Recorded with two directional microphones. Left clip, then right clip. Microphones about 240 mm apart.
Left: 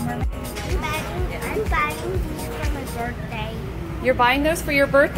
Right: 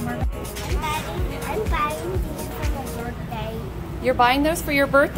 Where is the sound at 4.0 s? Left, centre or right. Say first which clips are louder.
Even; centre.